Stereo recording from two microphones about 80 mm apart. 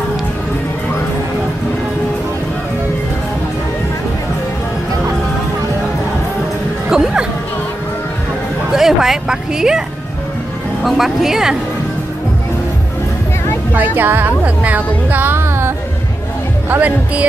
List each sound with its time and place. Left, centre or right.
6.9 s music: centre
8.7 s a sound: centre
10.8 s speech: centre
13.9 s speech: right